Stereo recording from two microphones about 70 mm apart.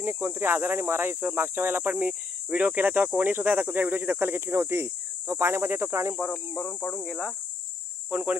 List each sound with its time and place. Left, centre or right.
0.0 s speech: right
6.6 s speech: left
8.1 s speech: right